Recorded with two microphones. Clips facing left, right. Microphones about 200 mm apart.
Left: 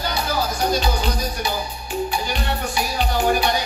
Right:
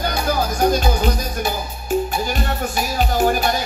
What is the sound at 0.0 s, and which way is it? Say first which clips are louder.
Music: right 3 dB; 50° right (ahead or behind).